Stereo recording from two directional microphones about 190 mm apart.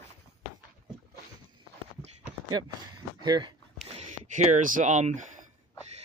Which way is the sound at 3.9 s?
40° right (ahead or behind).